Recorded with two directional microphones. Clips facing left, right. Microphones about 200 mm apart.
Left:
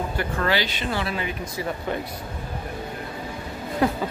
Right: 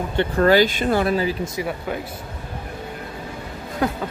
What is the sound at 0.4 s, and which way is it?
Speech, 45° right (ahead or behind).